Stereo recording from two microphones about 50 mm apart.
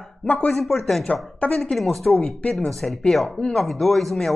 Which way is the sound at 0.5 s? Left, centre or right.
Centre.